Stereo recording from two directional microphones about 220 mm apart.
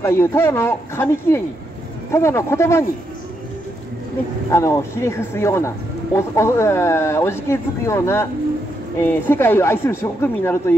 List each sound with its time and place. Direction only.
0.0 s speech: 10° left (ahead or behind)
4.5 s speech: 10° left (ahead or behind)